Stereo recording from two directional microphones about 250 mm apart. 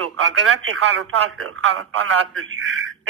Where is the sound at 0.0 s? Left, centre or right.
Right.